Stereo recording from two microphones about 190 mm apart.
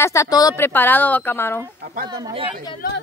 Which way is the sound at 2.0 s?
20° right (ahead or behind).